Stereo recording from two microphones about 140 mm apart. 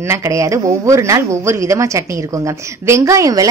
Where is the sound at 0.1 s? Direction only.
20° right (ahead or behind).